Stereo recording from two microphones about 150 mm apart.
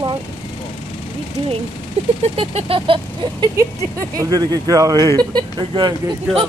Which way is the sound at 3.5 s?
20° right (ahead or behind).